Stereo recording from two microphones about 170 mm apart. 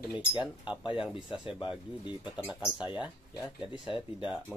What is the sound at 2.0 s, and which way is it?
Speech, 30° left (ahead or behind).